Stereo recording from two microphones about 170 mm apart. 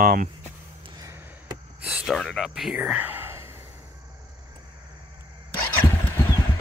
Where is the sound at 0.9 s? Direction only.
20° right (ahead or behind).